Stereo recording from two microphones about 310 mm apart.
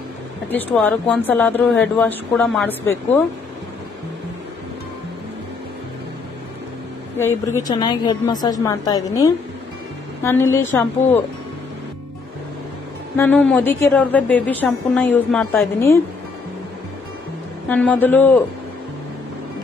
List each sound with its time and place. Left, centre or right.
0.5 s a woman's voice: centre
7.2 s a woman's voice: centre
13.1 s a woman's voice: centre
17.6 s a woman's voice: centre